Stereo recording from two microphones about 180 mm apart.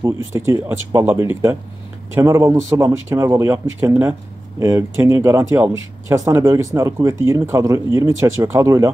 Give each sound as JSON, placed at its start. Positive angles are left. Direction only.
{"t": 0.3, "sound": "speech", "side_deg": -20}